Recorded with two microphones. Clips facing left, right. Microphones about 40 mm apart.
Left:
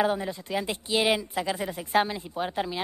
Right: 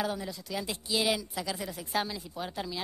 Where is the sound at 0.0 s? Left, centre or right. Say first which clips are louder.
Left 7 dB; left.